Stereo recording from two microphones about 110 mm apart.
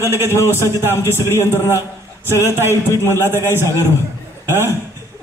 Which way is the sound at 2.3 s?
25° right (ahead or behind).